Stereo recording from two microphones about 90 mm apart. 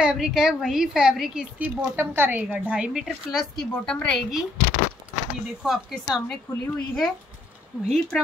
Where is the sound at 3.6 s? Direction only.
10° left (ahead or behind).